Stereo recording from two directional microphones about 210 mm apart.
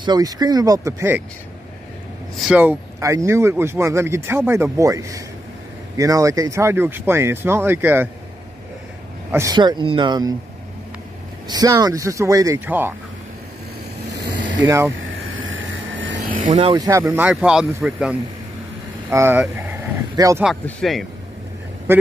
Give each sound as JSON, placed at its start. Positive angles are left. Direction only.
{"t": 0.0, "sound": "speech", "side_deg": -20}
{"t": 2.3, "sound": "speech", "side_deg": -5}
{"t": 9.3, "sound": "speech", "side_deg": -15}
{"t": 11.4, "sound": "speech", "side_deg": -20}
{"t": 14.6, "sound": "speech", "side_deg": -10}
{"t": 15.0, "sound": "vehicle", "side_deg": -70}
{"t": 16.3, "sound": "speech", "side_deg": -40}
{"t": 20.6, "sound": "speech", "side_deg": 0}